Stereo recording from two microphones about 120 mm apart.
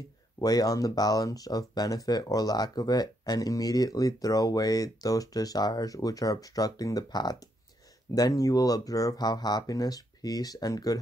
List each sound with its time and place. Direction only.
0.4 s speech: 30° left (ahead or behind)